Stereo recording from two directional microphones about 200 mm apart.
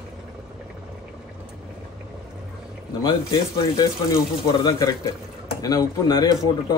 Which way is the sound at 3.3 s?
20° left (ahead or behind).